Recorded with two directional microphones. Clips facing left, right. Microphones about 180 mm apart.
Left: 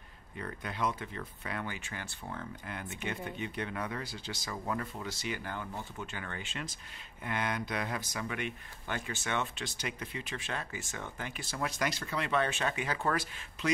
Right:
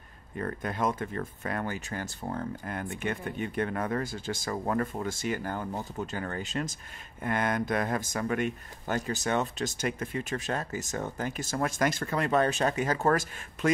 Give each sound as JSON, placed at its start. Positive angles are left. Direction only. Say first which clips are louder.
{"t": 0.4, "sound": "speech", "louder": "right 5 dB", "side_deg": -45}